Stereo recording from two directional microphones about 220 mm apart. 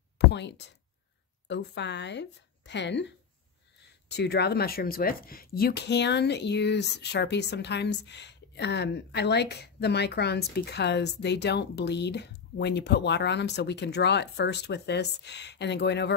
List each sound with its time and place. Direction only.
0.3 s speech: 50° left (ahead or behind)
4.1 s speech: 50° left (ahead or behind)